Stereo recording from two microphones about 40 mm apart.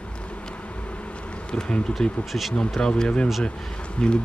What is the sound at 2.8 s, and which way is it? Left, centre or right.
Speech, centre.